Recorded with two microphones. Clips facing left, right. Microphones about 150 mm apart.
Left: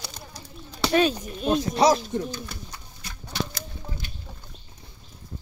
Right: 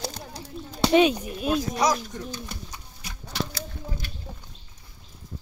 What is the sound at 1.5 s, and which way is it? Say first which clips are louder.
Speech: left 4 dB; 30° left (ahead or behind).